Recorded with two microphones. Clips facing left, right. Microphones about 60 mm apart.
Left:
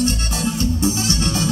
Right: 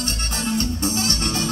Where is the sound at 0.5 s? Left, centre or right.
Right.